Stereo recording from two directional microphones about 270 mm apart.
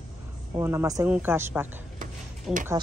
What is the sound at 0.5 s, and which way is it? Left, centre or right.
A woman's voice, centre.